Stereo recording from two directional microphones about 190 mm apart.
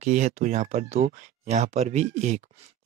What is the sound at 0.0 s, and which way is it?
Speech, 40° right (ahead or behind).